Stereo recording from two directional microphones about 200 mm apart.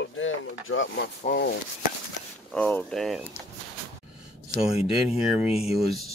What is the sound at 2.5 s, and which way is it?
Speech, 5° left (ahead or behind).